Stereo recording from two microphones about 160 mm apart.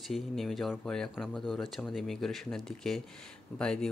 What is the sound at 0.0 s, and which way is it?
Speech, centre (ahead or behind).